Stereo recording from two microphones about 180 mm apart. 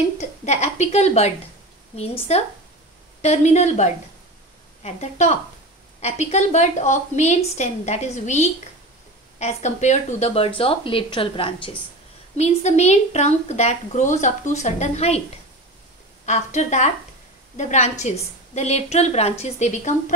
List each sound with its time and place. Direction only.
0.5 s a woman's voice: 40° left (ahead or behind)
16.3 s a woman's voice: 40° left (ahead or behind)